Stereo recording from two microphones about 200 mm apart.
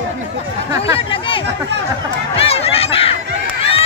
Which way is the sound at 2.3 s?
30° left (ahead or behind).